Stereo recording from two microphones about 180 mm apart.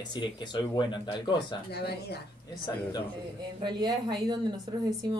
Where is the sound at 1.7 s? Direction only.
65° left (ahead or behind).